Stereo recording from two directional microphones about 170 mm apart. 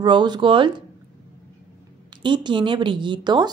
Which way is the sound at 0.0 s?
25° right (ahead or behind).